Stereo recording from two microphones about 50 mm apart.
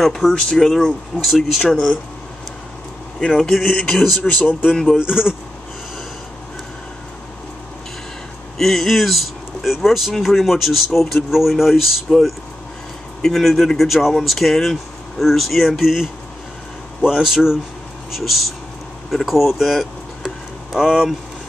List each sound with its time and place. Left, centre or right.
0.0 s speech: centre
0.3 s speech: centre
3.3 s speech: centre
4.2 s speech: left
8.5 s speech: centre
20.2 s a sound: centre